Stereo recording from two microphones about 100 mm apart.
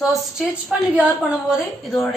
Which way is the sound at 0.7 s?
10° right (ahead or behind).